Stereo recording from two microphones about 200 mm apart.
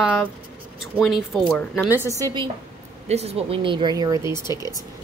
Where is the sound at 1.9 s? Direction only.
10° right (ahead or behind).